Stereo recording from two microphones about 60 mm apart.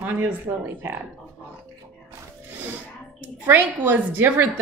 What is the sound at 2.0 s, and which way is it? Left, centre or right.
A woman's voice, right.